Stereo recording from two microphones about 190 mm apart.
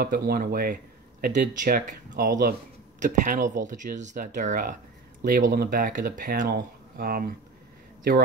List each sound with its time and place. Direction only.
0.0 s speech: 50° right (ahead or behind)
3.0 s speech: 40° right (ahead or behind)